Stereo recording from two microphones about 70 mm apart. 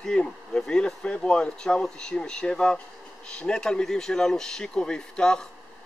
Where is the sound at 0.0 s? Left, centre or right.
Centre.